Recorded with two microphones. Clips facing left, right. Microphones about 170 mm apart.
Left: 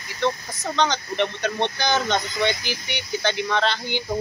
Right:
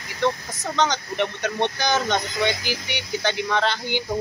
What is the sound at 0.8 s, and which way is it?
A man's voice, 15° right (ahead or behind).